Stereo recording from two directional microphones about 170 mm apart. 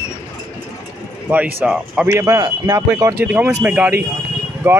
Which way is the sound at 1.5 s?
5° right (ahead or behind).